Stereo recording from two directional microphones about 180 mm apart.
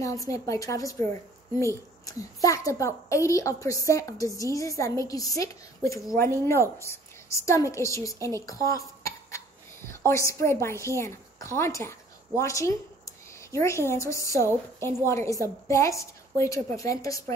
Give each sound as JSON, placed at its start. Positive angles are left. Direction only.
{"t": 0.0, "sound": "a woman's voice", "side_deg": 20}